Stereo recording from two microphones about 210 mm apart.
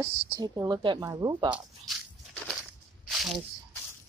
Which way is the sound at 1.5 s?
Centre (ahead or behind).